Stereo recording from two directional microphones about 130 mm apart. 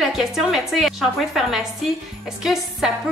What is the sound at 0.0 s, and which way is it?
Speech, centre (ahead or behind).